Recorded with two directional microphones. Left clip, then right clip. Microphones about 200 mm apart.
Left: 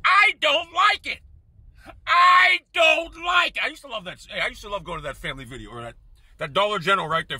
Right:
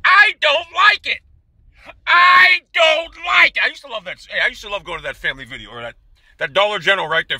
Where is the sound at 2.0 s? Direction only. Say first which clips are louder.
Right 5 dB; 10° left (ahead or behind).